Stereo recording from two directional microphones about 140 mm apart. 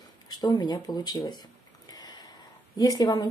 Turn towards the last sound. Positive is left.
turn(degrees=30)  # may be behind; listen again after turning